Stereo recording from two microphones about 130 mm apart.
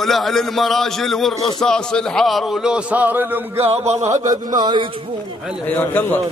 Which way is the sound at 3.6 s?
55° right (ahead or behind).